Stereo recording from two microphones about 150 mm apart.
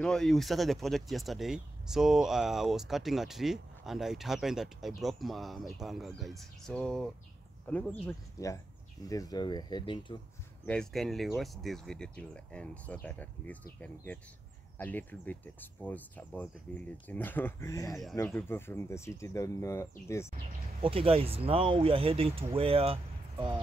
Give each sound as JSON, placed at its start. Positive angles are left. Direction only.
{"t": 0.0, "sound": "speech", "side_deg": 5}
{"t": 8.4, "sound": "speech", "side_deg": 20}
{"t": 10.6, "sound": "speech", "side_deg": 5}
{"t": 20.8, "sound": "speech", "side_deg": -35}